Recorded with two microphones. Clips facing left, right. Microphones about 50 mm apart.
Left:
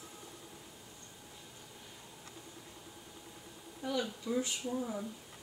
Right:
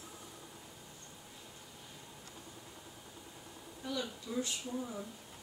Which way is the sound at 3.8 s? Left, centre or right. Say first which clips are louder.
Left 4 dB; centre.